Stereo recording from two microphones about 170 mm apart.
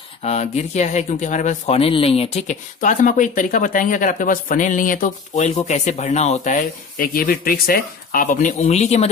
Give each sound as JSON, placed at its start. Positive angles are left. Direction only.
{"t": 0.2, "sound": "speech", "side_deg": 40}